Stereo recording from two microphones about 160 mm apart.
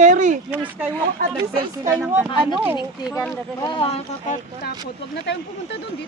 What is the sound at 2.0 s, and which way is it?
Speech, 15° right (ahead or behind).